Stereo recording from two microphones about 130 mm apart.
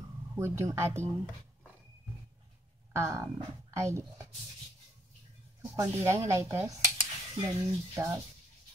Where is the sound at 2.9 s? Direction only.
20° right (ahead or behind).